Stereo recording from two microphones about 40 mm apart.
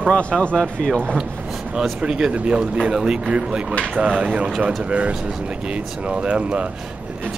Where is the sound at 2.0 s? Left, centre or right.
Right.